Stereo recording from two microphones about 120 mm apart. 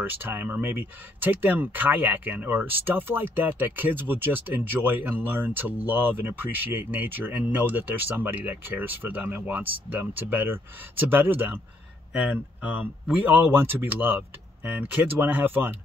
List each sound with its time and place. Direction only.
0.0 s speech: 15° right (ahead or behind)